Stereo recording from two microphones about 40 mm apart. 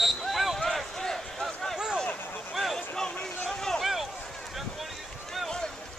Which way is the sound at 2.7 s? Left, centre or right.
Centre.